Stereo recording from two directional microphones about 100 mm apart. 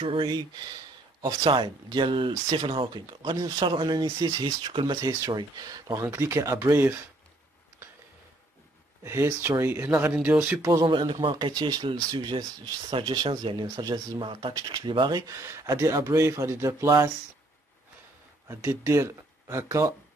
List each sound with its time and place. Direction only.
0.0 s a man's voice: 60° right (ahead or behind)
3.3 s speech: 45° right (ahead or behind)
5.9 s speech: 30° right (ahead or behind)
9.0 s speech: 25° right (ahead or behind)
10.6 s speech: 35° right (ahead or behind)
10.9 s a man's voice: 55° right (ahead or behind)
11.5 s speech: 45° right (ahead or behind)
14.5 s speech: 45° right (ahead or behind); by 16.9 s 25° right (ahead or behind)
18.5 s speech: 25° right (ahead or behind)